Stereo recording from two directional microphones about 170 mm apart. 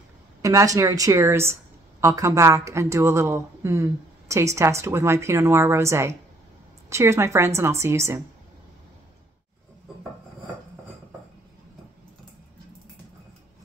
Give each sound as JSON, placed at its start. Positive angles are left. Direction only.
{"t": 0.4, "sound": "speech", "side_deg": -20}